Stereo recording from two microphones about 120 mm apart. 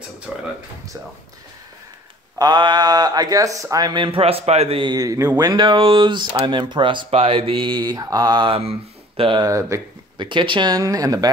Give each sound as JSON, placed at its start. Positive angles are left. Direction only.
{"t": 0.3, "sound": "speech", "side_deg": -5}
{"t": 2.3, "sound": "speech", "side_deg": -35}
{"t": 4.9, "sound": "speech", "side_deg": -30}
{"t": 5.7, "sound": "speech", "side_deg": -45}
{"t": 9.4, "sound": "speech", "side_deg": -25}
{"t": 10.1, "sound": "speech", "side_deg": -45}